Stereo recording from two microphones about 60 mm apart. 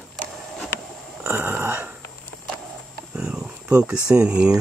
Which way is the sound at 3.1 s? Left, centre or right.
Centre.